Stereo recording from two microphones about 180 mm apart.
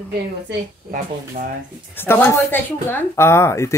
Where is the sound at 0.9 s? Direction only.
55° right (ahead or behind).